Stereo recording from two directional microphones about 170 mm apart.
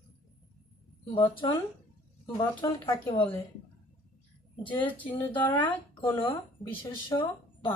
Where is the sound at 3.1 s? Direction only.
35° left (ahead or behind).